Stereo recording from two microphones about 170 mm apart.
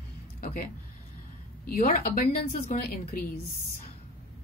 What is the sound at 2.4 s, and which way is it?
Speech, 45° left (ahead or behind).